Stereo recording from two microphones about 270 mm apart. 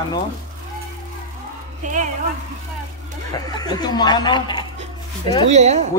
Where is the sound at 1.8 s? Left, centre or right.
Right.